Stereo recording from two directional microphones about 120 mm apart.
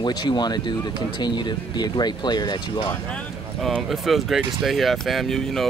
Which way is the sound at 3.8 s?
Centre (ahead or behind).